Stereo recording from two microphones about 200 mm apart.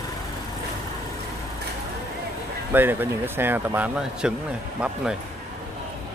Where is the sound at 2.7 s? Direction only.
10° right (ahead or behind).